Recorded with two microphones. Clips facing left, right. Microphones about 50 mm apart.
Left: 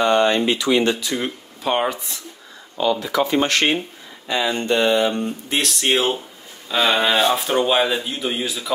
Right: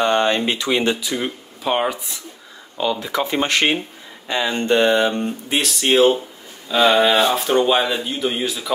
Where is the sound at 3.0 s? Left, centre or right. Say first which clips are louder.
Left 2 dB; right.